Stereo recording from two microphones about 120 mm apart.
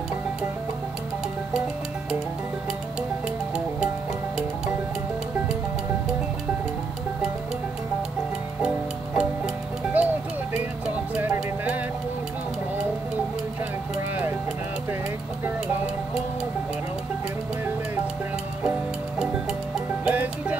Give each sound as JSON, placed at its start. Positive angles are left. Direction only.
{"t": 8.5, "sound": "music", "side_deg": -10}
{"t": 11.3, "sound": "music", "side_deg": -10}
{"t": 20.1, "sound": "music", "side_deg": -10}